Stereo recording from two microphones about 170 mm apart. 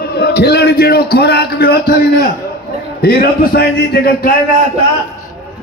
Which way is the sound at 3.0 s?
65° left (ahead or behind).